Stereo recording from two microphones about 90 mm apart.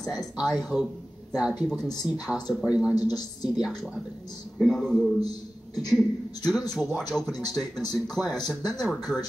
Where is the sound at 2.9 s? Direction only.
45° left (ahead or behind).